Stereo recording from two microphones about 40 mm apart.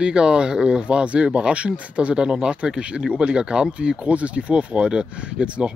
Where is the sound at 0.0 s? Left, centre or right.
Right.